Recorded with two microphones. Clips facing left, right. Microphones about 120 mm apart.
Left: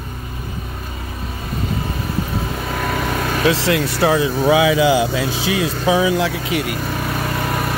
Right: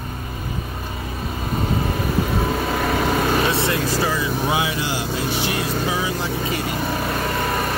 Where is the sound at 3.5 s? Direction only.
90° left.